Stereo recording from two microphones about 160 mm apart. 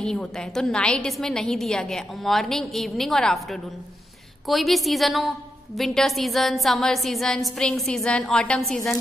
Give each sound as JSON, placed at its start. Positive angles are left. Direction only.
{"t": 0.0, "sound": "a woman's voice", "side_deg": 5}